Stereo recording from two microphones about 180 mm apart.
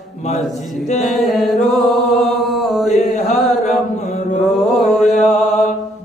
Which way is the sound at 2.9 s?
40° left (ahead or behind).